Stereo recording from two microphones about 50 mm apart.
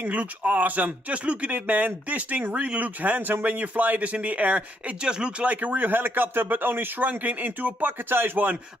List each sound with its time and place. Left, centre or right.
0.0 s a man's voice: right